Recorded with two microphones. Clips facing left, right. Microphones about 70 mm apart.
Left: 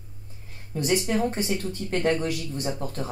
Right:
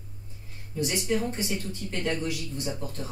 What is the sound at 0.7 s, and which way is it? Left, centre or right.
Speech, left.